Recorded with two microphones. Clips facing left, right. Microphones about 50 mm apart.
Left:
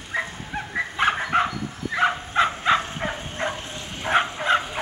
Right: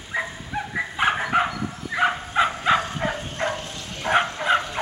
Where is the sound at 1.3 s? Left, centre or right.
Centre.